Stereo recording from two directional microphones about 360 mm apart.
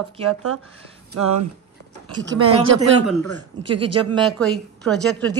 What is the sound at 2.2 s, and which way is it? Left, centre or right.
Speech, right.